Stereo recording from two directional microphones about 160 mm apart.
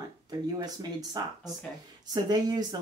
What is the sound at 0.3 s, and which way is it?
Speech, 25° right (ahead or behind).